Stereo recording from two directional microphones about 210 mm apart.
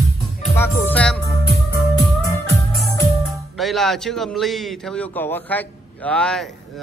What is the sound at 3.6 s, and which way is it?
A man's voice, centre (ahead or behind).